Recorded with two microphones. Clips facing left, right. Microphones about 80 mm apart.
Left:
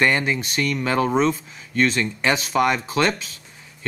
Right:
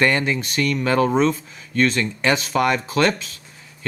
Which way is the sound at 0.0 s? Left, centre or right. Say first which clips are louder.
Right 1 dB; centre.